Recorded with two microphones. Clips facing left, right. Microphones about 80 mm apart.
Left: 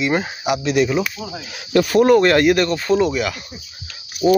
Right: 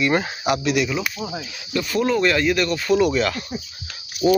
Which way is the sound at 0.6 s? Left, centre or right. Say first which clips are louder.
Left 4 dB; left.